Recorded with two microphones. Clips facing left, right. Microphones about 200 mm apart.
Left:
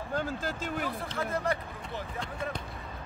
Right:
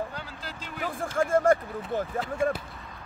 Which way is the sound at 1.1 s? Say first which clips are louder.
Right 11 dB; 50° right (ahead or behind).